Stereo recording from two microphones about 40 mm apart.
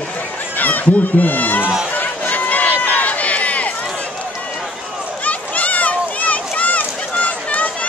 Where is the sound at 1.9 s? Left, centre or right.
Left.